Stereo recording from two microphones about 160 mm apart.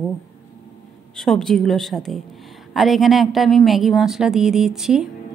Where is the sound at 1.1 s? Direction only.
5° left (ahead or behind).